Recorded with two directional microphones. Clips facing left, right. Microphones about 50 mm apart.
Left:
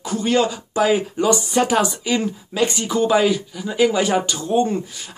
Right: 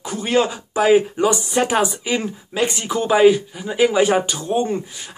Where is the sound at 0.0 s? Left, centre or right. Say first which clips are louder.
Even; centre.